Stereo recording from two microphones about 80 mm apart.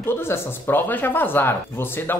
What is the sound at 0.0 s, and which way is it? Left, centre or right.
Speech, left.